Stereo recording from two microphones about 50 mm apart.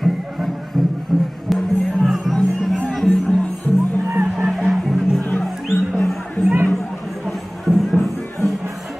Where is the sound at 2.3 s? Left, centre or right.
Centre.